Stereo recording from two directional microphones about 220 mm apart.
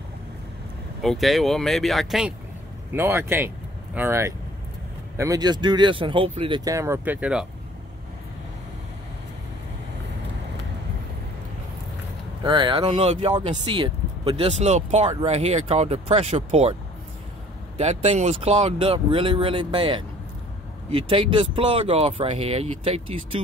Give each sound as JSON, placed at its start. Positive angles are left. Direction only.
{"t": 1.0, "sound": "speech", "side_deg": 0}
{"t": 12.4, "sound": "speech", "side_deg": -20}
{"t": 17.7, "sound": "speech", "side_deg": -30}